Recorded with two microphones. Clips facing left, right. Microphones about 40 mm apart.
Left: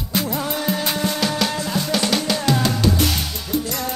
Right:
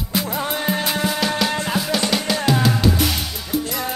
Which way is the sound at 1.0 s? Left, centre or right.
Centre.